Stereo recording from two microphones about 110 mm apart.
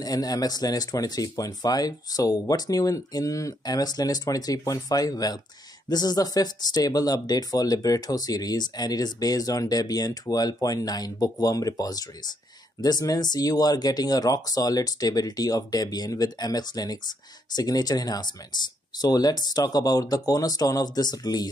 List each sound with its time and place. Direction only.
0.0 s speech: 35° left (ahead or behind)